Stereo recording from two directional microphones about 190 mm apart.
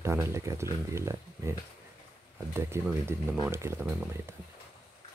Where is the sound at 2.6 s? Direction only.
15° right (ahead or behind).